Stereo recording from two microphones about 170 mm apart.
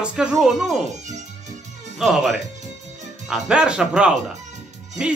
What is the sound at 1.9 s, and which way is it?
Speech, centre (ahead or behind).